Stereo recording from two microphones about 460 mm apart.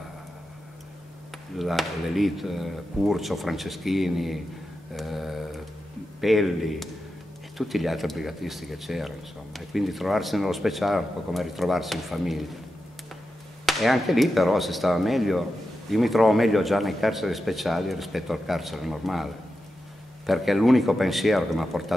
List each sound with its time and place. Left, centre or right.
1.6 s speech: centre
4.9 s a sound: centre
6.2 s speech: centre
13.7 s speech: centre